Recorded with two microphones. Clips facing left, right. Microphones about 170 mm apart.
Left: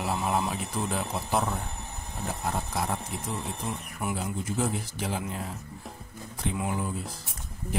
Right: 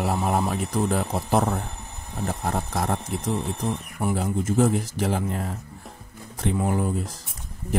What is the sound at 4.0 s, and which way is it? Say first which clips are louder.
Speech: right 7 dB; 40° right (ahead or behind).